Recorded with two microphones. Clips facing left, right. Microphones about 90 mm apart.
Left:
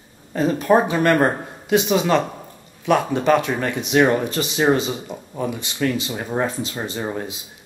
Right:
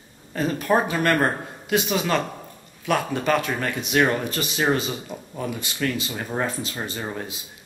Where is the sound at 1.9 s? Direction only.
25° left (ahead or behind).